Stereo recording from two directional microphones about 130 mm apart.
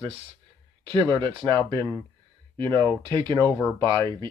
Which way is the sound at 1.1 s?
40° right (ahead or behind).